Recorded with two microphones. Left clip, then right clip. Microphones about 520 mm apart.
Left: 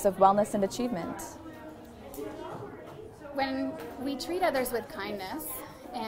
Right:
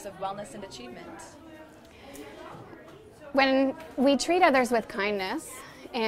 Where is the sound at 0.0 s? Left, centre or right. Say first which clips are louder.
Left 13 dB; left.